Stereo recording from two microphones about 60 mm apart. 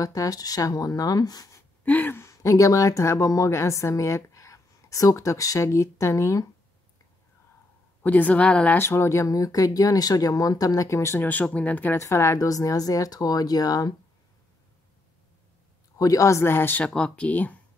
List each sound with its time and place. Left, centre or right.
0.0 s speech: left
1.9 s speech: left
2.3 s a woman's voice: left
8.0 s speech: left
8.7 s speech: left
11.1 s speech: left
12.0 s a woman's voice: left
12.4 s speech: left
16.0 s a woman's voice: left
16.4 s speech: left
16.8 s speech: centre